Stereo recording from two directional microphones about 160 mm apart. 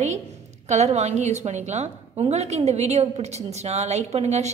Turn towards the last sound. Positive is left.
turn(degrees=-45)  # may be behind; listen again after turning